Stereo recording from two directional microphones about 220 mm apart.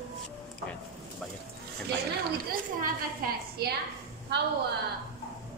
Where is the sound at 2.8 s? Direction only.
45° right (ahead or behind).